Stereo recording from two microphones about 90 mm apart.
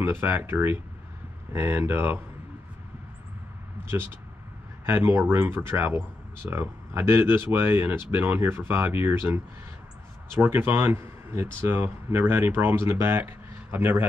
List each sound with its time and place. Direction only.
0.0 s speech: 25° right (ahead or behind)
4.8 s speech: 25° right (ahead or behind)